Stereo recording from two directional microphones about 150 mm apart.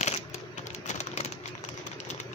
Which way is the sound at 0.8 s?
50° left (ahead or behind).